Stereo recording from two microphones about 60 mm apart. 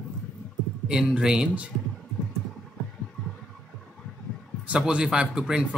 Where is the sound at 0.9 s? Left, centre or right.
Centre.